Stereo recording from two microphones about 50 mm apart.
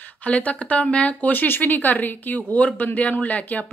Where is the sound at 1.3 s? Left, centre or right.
Left.